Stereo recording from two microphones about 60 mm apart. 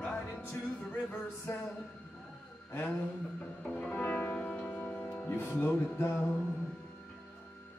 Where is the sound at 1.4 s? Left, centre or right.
Left.